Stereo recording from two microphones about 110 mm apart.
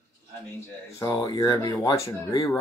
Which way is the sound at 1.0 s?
35° left (ahead or behind).